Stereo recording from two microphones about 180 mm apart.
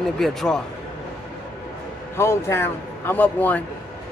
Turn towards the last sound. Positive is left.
turn(degrees=10)  # may be behind; listen again after turning